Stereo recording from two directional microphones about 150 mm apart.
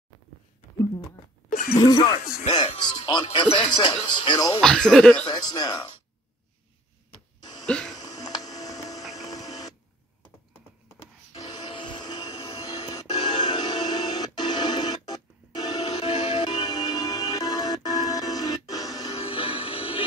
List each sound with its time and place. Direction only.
1.5 s a sound: 70° left (ahead or behind)
1.8 s speech: 25° left (ahead or behind)
2.1 s music: 55° left (ahead or behind)
2.5 s speech: 30° left (ahead or behind)
4.6 s speech: 5° left (ahead or behind)
5.3 s speech: 25° left (ahead or behind)
7.6 s a sound: 5° left (ahead or behind)
7.9 s music: 25° left (ahead or behind)
9.3 s printer: 25° left (ahead or behind)
11.3 s music: 30° left (ahead or behind)
19.1 s music: 40° left (ahead or behind)